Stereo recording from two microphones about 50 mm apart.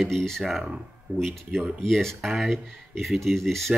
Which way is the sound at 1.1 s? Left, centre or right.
Right.